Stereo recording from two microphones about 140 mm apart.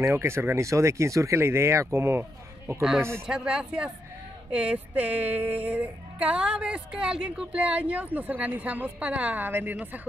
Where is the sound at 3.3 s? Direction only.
5° right (ahead or behind).